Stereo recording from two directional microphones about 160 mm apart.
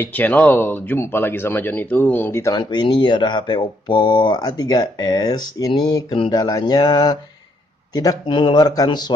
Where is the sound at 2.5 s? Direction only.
25° left (ahead or behind).